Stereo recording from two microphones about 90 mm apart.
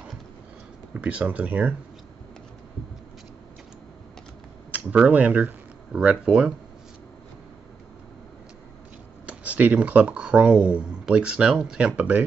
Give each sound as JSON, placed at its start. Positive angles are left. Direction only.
{"t": 0.9, "sound": "speech", "side_deg": -15}
{"t": 4.6, "sound": "speech", "side_deg": -15}
{"t": 9.2, "sound": "speech", "side_deg": -15}